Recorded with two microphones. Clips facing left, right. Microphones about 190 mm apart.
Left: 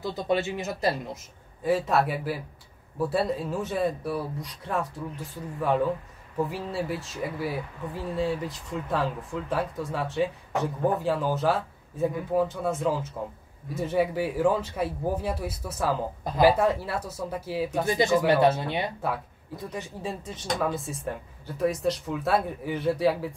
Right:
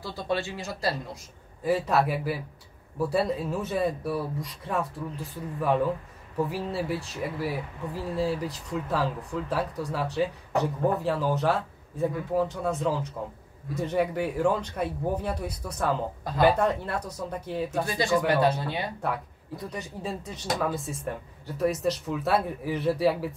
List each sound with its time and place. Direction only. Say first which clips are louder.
0.0 s speech: left 3 dB; 20° left (ahead or behind)
1.6 s speech: even; centre (ahead or behind)
17.8 s speech: left 4 dB; 20° left (ahead or behind)
18.9 s speech: even; centre (ahead or behind)